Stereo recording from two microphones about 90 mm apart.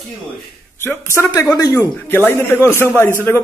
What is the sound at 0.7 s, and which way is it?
A man's voice, 30° left (ahead or behind).